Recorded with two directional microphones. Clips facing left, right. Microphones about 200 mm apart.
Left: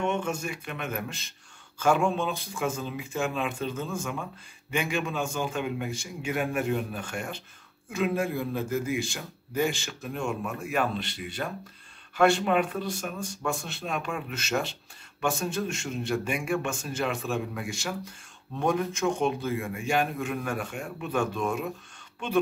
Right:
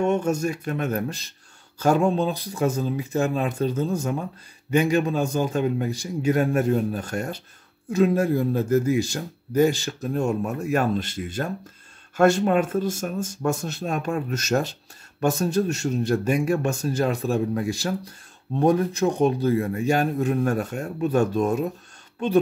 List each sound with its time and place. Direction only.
0.0 s speech: 40° right (ahead or behind)